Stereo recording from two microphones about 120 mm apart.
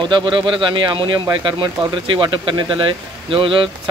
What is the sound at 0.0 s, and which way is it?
Speech, 40° right (ahead or behind).